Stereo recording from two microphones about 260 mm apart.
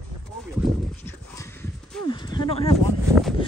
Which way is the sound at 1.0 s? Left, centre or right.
Centre.